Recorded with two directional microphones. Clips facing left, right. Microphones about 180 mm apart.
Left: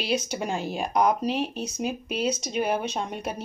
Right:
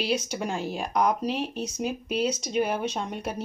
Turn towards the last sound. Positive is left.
turn(degrees=10)  # may be behind; listen again after turning